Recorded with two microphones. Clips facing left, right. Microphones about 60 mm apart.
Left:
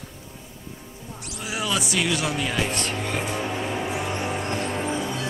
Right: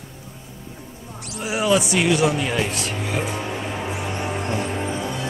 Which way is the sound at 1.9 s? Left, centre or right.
Centre.